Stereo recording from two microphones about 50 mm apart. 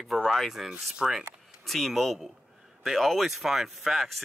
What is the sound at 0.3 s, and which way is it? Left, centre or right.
Speech, centre.